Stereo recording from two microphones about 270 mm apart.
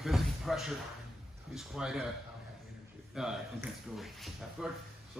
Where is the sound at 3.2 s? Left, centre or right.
Centre.